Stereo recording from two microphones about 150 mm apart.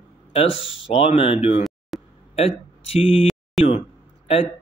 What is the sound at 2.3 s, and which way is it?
Speech, 40° left (ahead or behind).